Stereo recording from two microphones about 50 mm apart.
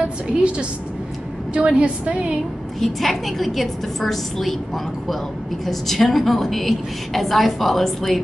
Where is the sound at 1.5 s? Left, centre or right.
Right.